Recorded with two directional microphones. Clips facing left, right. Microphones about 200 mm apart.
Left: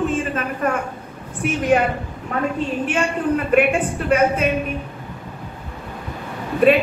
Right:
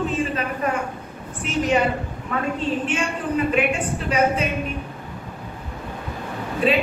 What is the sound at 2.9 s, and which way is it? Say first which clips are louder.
A woman's voice: left 4 dB; 60° left (ahead or behind).